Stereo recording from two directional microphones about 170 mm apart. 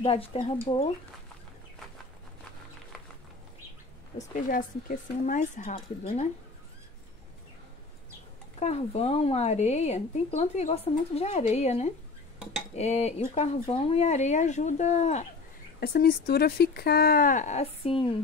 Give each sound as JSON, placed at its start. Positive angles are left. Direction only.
{"t": 0.0, "sound": "speech", "side_deg": 35}
{"t": 4.3, "sound": "speech", "side_deg": 50}
{"t": 8.5, "sound": "speech", "side_deg": 40}
{"t": 15.8, "sound": "speech", "side_deg": 60}